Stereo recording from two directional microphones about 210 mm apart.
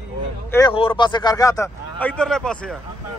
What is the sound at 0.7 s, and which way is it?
Speech, 25° left (ahead or behind).